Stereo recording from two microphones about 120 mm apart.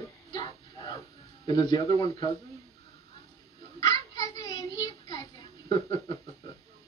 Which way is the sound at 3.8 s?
30° left (ahead or behind).